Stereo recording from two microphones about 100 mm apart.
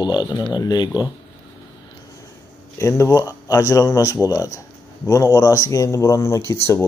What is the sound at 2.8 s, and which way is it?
Speech, 30° left (ahead or behind).